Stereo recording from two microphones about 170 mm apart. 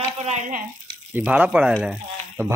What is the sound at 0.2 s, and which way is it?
Speech, 45° right (ahead or behind).